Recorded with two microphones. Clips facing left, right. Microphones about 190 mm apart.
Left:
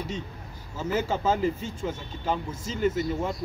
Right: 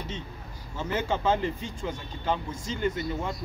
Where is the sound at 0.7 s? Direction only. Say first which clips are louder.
Left 2 dB; 5° left (ahead or behind).